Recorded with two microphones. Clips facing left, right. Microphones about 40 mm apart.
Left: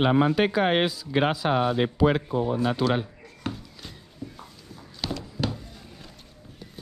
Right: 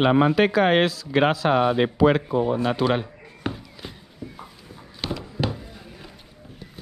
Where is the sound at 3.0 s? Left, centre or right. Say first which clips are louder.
Right 1 dB; right.